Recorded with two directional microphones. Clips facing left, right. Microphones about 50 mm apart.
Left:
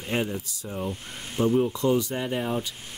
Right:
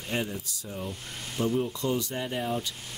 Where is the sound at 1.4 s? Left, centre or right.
Left.